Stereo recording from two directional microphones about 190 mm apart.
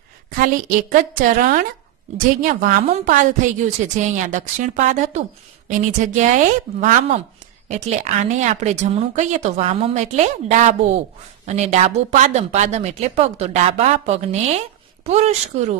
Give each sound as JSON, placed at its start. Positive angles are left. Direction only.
{"t": 0.4, "sound": "a woman's voice", "side_deg": -45}